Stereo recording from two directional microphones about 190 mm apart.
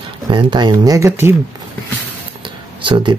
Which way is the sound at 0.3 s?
25° right (ahead or behind).